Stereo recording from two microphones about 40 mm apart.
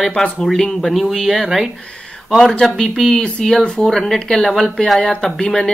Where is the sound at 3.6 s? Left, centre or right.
Left.